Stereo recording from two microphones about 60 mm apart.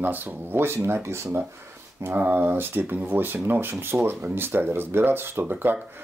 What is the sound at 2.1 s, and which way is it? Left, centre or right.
Speech, right.